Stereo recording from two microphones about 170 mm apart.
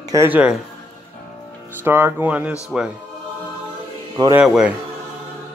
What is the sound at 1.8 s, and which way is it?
A man's voice, 10° right (ahead or behind).